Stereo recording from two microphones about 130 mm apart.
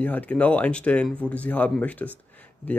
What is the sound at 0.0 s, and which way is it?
Speech, 10° left (ahead or behind).